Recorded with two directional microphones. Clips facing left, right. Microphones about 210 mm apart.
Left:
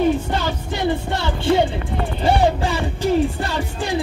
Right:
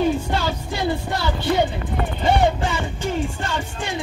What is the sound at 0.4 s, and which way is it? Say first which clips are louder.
Music: left 1 dB; 20° left (ahead or behind).